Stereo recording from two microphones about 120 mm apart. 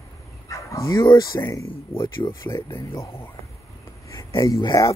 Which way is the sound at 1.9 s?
45° left (ahead or behind).